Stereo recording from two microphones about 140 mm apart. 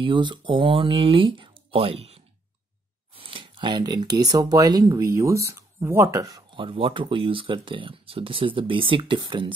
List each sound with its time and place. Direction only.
0.0 s speech: 35° right (ahead or behind)
6.6 s speech: 40° right (ahead or behind)